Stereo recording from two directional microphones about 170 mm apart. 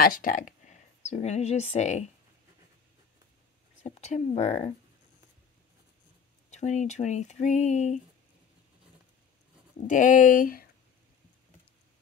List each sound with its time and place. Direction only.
0.0 s speech: 55° left (ahead or behind)
3.8 s speech: 40° left (ahead or behind)
6.5 s speech: 45° left (ahead or behind)
9.8 s speech: 50° left (ahead or behind)